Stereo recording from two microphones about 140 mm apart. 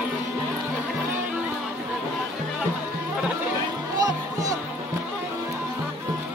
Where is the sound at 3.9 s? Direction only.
25° right (ahead or behind).